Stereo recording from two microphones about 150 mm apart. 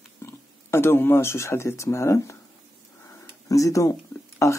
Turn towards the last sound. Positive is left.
turn(degrees=20)  # may be behind; listen again after turning